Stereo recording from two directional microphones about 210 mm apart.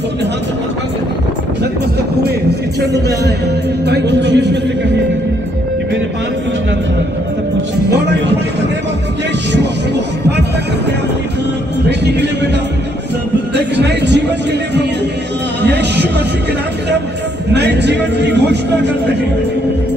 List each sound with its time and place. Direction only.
3.8 s a man's voice: 55° right (ahead or behind)
7.9 s music: 55° right (ahead or behind)
12.0 s music: 55° right (ahead or behind)
13.6 s a sound: 55° right (ahead or behind)
15.6 s a sound: 55° right (ahead or behind)
17.5 s a man's voice: 55° right (ahead or behind)